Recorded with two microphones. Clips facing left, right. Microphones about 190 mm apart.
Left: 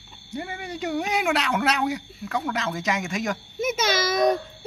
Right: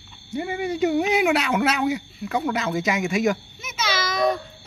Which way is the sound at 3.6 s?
50° left (ahead or behind).